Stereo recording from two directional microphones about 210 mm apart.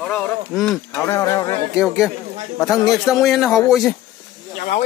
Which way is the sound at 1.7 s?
Centre (ahead or behind).